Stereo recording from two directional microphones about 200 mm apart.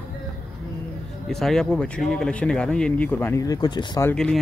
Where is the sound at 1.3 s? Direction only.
Centre (ahead or behind); by 4.1 s 20° left (ahead or behind).